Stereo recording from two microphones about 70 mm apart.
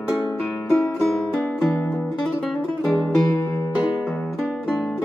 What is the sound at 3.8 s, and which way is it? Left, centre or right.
Music, centre.